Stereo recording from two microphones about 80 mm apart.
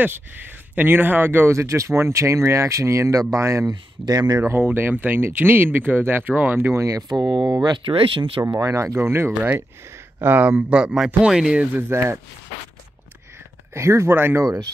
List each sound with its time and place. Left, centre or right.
0.0 s speech: right
4.0 s speech: right
4.4 s speech: right
6.8 s speech: right
7.1 s speech: right
8.5 s speech: right
8.8 s speech: right; by 11.6 s centre
11.7 s speech: right
13.7 s speech: right